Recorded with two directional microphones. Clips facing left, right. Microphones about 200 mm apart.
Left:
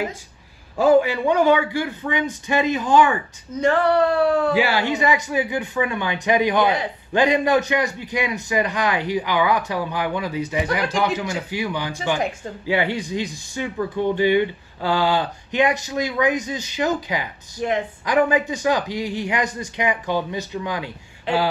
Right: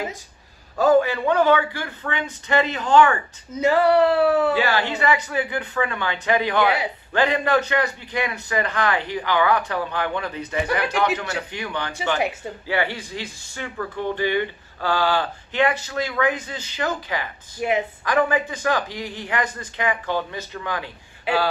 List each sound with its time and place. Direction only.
0.7 s speech: 15° left (ahead or behind)
3.5 s speech: 10° right (ahead or behind)
4.6 s speech: 15° left (ahead or behind)
17.6 s speech: 10° right (ahead or behind)
18.0 s speech: 15° left (ahead or behind)
21.3 s speech: 5° right (ahead or behind)